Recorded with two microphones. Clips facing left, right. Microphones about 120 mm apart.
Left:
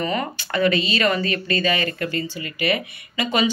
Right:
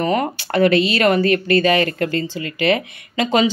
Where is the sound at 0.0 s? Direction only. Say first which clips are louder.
Right 5 dB; 65° right (ahead or behind).